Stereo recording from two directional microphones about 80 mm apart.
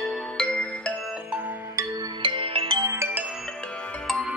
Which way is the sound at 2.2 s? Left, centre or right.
Right.